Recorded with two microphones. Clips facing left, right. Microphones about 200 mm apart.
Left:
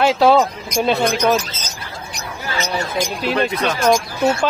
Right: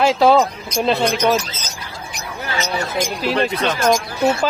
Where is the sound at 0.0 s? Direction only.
Centre (ahead or behind).